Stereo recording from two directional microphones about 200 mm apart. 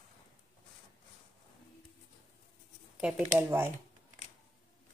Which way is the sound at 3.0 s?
10° right (ahead or behind).